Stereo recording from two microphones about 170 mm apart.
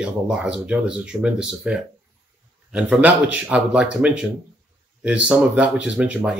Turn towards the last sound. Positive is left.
turn(degrees=-5)  # may be behind; listen again after turning